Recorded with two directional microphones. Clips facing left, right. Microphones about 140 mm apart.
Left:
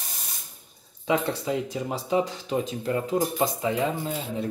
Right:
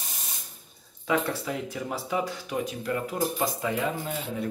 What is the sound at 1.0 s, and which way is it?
Speech, 25° left (ahead or behind).